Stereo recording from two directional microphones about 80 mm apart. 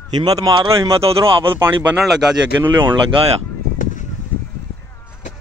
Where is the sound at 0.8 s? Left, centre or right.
Right.